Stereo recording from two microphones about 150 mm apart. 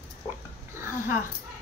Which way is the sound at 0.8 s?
15° right (ahead or behind).